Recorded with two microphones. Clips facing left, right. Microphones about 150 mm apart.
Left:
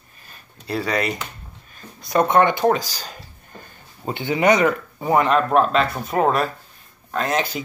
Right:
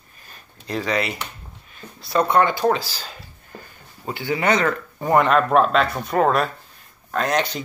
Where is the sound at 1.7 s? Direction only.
40° left (ahead or behind).